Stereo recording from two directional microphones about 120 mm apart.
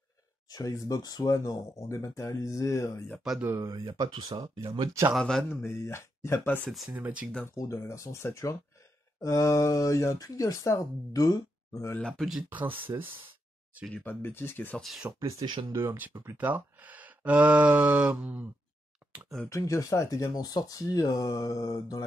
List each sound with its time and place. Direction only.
0.5 s speech: 30° left (ahead or behind)
3.5 s speech: 25° right (ahead or behind)
5.1 s speech: 5° left (ahead or behind)
5.5 s speech: 20° left (ahead or behind)
6.9 s speech: 10° right (ahead or behind)
7.4 s speech: 25° left (ahead or behind)
12.0 s speech: centre (ahead or behind)
12.4 s speech: 15° right (ahead or behind)
14.0 s speech: 20° left (ahead or behind)
14.8 s speech: centre (ahead or behind)
15.0 s speech: 25° right (ahead or behind)
19.5 s speech: 25° left (ahead or behind)